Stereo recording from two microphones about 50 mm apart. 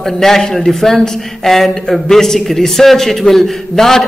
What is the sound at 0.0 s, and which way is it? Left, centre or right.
Speech, centre.